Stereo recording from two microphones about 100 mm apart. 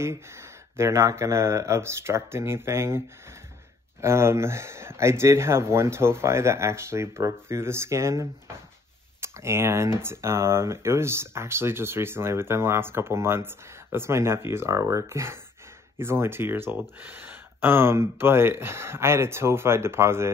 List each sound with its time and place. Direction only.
0.0 s speech: 25° right (ahead or behind)
4.0 s speech: 25° right (ahead or behind)